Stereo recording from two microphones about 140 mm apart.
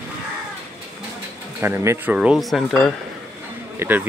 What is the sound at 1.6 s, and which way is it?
Speech, 15° right (ahead or behind).